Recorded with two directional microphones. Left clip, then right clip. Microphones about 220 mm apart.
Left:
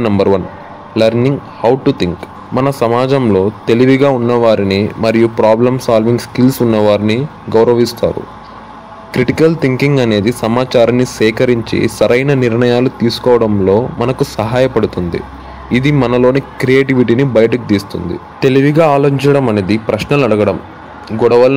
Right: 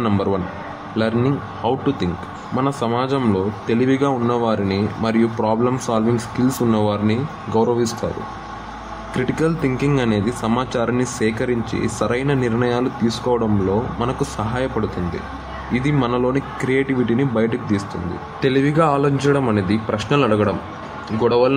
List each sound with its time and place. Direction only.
0.0 s a man's voice: 30° left (ahead or behind)
1.6 s a man's voice: 30° left (ahead or behind)
9.1 s a man's voice: 30° left (ahead or behind)